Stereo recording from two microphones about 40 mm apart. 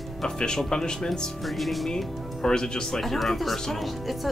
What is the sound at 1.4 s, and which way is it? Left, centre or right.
Speech, centre.